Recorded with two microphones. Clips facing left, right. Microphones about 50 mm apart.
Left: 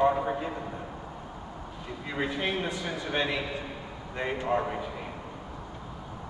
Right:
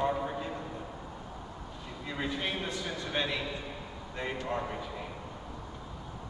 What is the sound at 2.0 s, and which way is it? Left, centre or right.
A man's voice, centre.